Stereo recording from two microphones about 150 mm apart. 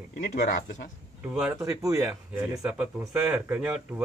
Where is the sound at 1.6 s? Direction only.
20° right (ahead or behind).